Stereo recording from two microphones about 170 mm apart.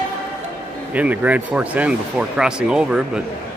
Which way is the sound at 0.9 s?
10° right (ahead or behind).